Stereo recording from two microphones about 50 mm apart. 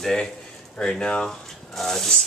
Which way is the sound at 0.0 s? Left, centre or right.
Centre.